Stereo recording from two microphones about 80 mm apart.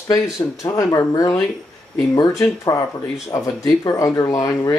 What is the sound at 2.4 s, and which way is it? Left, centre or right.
Speech, left.